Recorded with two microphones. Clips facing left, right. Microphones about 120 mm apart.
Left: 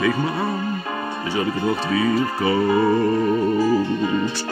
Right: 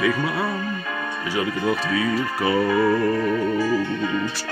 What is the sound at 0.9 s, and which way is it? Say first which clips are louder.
Music: left 2 dB; 35° left (ahead or behind).